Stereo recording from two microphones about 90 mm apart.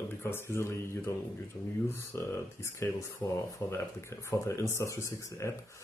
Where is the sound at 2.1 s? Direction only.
30° left (ahead or behind).